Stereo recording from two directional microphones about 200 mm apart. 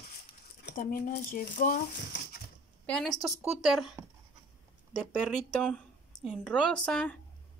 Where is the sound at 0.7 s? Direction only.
45° left (ahead or behind).